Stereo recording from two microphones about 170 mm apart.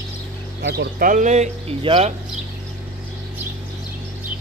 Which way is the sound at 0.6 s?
70° right (ahead or behind).